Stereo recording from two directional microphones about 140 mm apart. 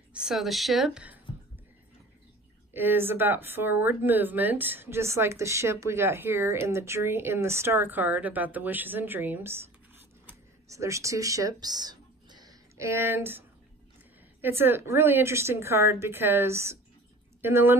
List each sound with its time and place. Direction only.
0.1 s speech: 5° right (ahead or behind)
2.7 s speech: 15° right (ahead or behind)
10.2 s a sound: 20° right (ahead or behind)
14.4 s speech: 15° right (ahead or behind)